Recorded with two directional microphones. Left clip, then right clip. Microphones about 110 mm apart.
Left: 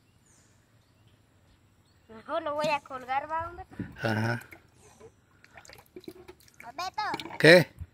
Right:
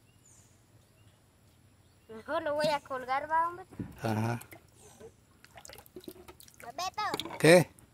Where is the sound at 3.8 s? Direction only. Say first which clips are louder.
Left 5 dB; 15° left (ahead or behind).